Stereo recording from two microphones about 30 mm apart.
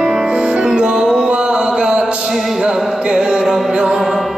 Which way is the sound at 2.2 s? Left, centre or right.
Centre.